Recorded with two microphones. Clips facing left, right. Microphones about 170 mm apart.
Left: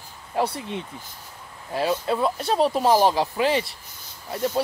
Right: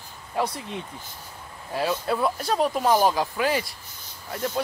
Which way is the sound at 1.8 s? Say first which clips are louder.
Left 2 dB; 20° left (ahead or behind).